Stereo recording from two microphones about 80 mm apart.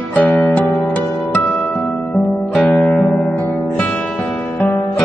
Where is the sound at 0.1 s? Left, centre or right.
Centre.